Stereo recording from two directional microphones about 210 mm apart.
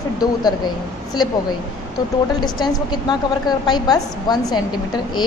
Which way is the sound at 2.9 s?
20° left (ahead or behind).